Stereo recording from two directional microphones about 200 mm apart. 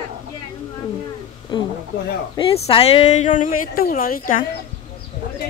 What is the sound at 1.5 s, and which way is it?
A woman's voice, 25° left (ahead or behind).